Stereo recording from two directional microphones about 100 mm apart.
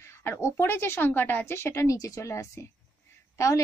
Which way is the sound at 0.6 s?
25° left (ahead or behind).